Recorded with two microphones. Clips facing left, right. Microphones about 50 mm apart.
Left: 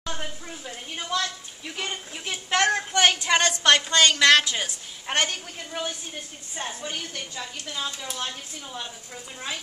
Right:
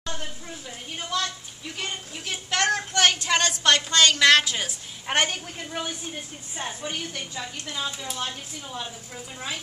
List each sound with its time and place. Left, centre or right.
0.0 s a woman's voice: centre
1.8 s a woman's voice: centre